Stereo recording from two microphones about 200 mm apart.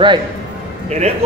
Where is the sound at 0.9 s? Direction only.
35° right (ahead or behind).